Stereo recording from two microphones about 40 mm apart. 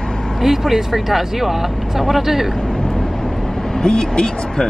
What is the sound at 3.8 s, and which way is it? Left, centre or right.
Speech, centre.